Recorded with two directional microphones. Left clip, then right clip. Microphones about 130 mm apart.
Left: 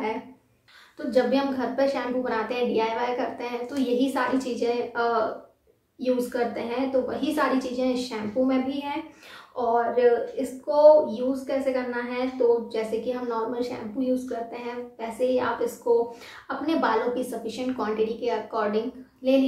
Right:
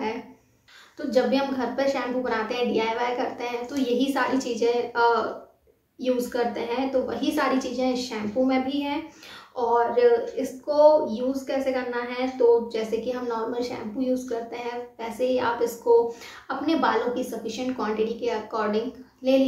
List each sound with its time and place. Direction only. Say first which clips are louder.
0.9 s a woman's voice: even; 15° right (ahead or behind)
9.9 s a woman's voice: right 1 dB; 15° right (ahead or behind)